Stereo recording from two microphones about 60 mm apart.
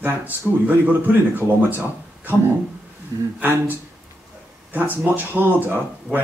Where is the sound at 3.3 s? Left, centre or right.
Right.